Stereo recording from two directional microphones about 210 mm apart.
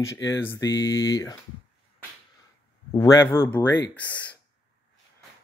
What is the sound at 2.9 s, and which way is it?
Speech, 15° left (ahead or behind).